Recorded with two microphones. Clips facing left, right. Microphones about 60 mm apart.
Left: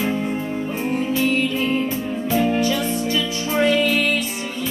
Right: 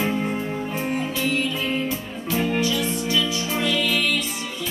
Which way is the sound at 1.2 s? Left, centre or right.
Left.